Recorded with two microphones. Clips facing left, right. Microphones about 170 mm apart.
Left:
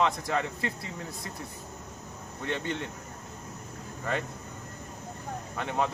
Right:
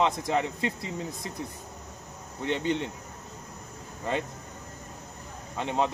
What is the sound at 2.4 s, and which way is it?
Speech, 20° right (ahead or behind).